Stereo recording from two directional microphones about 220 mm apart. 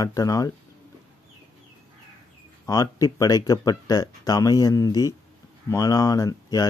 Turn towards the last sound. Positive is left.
turn(degrees=15)  # may be behind; listen again after turning